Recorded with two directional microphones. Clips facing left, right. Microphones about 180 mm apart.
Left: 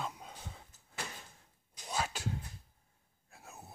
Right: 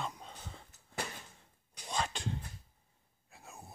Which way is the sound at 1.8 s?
5° left (ahead or behind).